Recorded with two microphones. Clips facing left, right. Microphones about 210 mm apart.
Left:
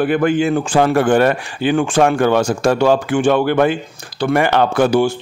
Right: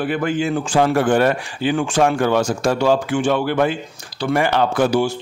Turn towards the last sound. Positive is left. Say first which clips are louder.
# left 3 dB
turn(degrees=55)  # may be behind; listen again after turning